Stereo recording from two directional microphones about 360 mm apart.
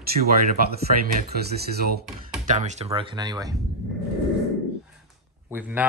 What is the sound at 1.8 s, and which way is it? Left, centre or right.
Speech, right.